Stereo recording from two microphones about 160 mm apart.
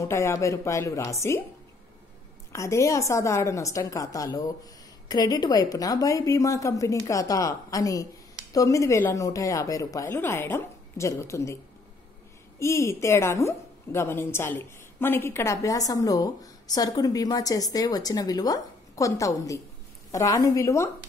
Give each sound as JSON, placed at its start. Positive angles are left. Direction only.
{"t": 0.0, "sound": "a woman's voice", "side_deg": 15}
{"t": 2.5, "sound": "a woman's voice", "side_deg": 20}
{"t": 12.5, "sound": "a woman's voice", "side_deg": 15}